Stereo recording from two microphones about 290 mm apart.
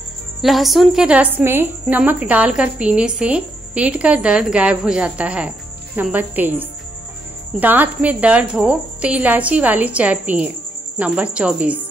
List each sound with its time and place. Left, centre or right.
0.4 s a woman's voice: centre